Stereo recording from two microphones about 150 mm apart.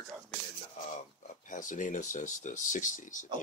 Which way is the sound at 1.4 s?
60° left (ahead or behind).